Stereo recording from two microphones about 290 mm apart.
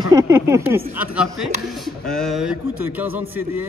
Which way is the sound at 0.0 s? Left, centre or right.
Centre.